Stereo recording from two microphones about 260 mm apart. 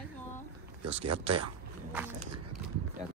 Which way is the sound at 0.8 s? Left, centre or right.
Right.